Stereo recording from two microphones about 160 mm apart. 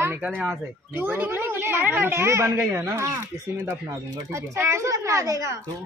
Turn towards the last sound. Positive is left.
turn(degrees=-20)  # may be behind; listen again after turning